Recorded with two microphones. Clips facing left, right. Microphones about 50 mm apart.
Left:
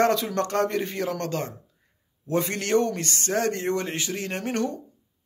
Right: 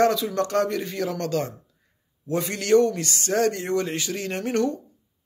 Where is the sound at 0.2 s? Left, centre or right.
Left.